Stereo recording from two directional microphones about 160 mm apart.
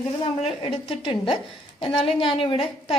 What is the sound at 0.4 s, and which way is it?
A woman's voice, 35° left (ahead or behind).